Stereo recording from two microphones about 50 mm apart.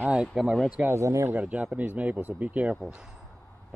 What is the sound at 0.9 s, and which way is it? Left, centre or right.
Speech, right.